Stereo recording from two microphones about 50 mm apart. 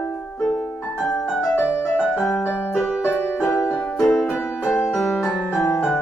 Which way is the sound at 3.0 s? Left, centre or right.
Left.